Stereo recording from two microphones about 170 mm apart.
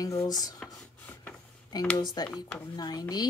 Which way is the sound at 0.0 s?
20° left (ahead or behind).